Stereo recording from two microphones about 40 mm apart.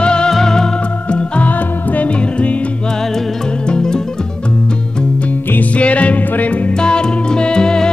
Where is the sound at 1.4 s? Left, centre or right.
Left.